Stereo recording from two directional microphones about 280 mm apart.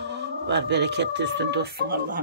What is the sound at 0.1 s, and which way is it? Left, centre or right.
Speech, right.